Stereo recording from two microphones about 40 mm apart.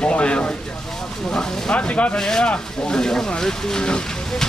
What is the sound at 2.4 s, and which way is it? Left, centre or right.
Speech, left.